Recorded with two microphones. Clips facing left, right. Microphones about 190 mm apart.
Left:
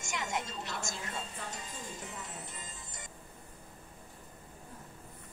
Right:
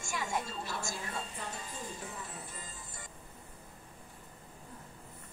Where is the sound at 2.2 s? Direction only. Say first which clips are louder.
Even; 20° left (ahead or behind).